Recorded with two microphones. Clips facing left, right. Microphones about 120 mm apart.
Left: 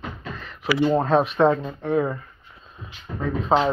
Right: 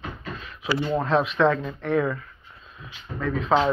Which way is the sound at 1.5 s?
25° left (ahead or behind).